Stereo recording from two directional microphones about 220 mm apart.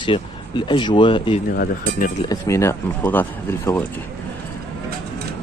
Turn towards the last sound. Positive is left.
turn(degrees=10)  # may be behind; listen again after turning